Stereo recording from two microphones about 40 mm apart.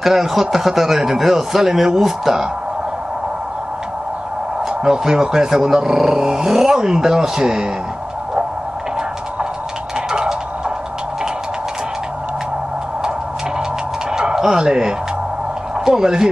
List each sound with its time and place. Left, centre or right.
0.0 s speech: centre
4.6 s speech: centre
14.1 s a sound: centre
14.6 s speech: centre